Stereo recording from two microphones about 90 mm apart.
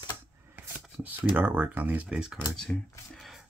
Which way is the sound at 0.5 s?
20° right (ahead or behind).